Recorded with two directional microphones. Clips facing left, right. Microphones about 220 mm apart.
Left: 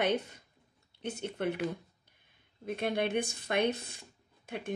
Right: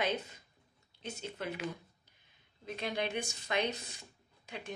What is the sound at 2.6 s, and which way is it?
A woman's voice, 55° left (ahead or behind).